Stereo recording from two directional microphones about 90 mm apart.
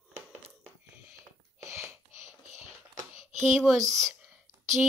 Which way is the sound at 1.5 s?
30° right (ahead or behind).